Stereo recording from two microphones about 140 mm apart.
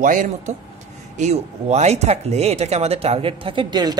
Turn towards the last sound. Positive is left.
turn(degrees=-30)  # may be behind; listen again after turning